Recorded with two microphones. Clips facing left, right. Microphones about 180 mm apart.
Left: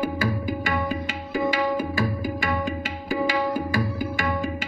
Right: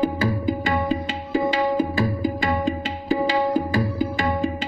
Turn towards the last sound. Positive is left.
turn(degrees=-30)  # may be behind; listen again after turning